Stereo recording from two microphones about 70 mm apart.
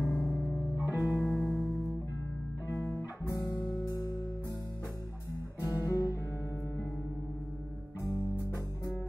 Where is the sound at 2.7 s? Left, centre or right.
Left.